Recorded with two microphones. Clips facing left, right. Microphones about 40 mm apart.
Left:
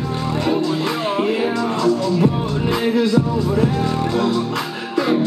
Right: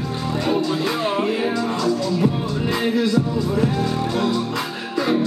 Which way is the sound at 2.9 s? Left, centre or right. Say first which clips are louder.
Left 3 dB; left.